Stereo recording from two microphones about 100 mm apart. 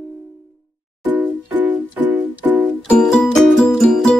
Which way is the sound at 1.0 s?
20° right (ahead or behind).